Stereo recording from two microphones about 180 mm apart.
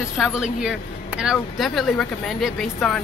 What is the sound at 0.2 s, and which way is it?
Speech, 5° right (ahead or behind).